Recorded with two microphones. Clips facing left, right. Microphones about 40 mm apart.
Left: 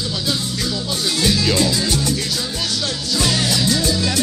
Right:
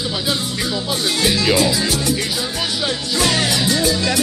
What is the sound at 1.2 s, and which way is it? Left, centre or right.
Music, centre.